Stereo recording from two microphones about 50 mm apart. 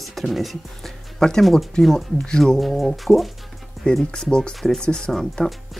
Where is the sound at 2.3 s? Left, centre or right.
Centre.